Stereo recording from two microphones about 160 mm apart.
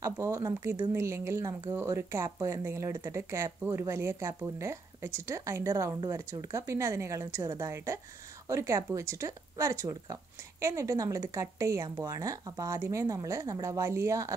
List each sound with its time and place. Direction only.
0.0 s a woman's voice: 20° right (ahead or behind)